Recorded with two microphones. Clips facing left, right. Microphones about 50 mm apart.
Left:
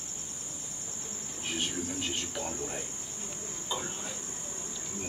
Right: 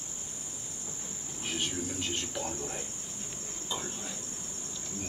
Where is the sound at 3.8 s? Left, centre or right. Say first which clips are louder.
Left 1 dB; centre.